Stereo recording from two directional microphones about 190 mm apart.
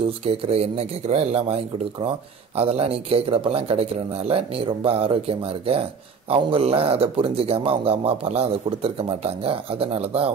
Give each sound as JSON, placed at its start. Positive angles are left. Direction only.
{"t": 0.2, "sound": "speech", "side_deg": -30}